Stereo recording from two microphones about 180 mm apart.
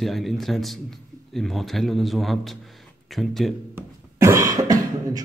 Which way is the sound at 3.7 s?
15° right (ahead or behind).